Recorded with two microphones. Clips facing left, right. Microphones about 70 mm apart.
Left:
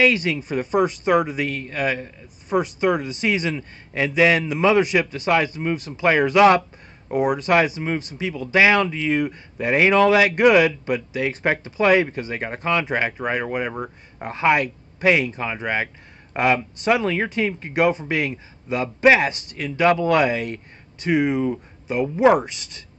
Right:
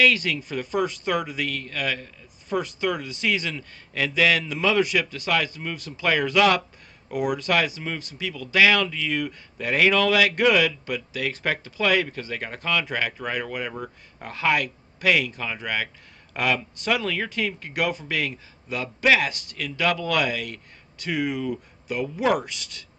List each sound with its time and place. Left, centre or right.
0.0 s speech: left